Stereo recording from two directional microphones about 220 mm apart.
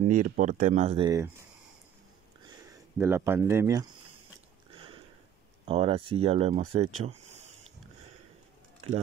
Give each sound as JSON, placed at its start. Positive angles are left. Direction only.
{"t": 0.0, "sound": "speech", "side_deg": -35}
{"t": 1.0, "sound": "speech", "side_deg": -15}
{"t": 2.6, "sound": "speech", "side_deg": -10}
{"t": 5.7, "sound": "speech", "side_deg": -25}